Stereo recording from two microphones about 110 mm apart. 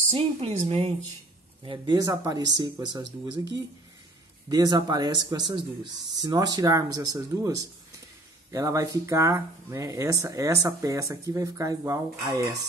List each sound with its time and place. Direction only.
0.1 s speech: 70° right (ahead or behind)
1.6 s speech: 50° right (ahead or behind)
2.0 s speech: 35° right (ahead or behind)
4.5 s speech: 35° right (ahead or behind)